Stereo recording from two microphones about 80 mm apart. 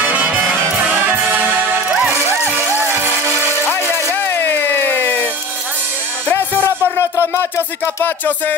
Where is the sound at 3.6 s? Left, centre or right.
Left.